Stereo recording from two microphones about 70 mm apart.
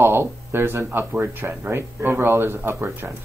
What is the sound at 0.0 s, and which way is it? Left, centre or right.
Speech, right.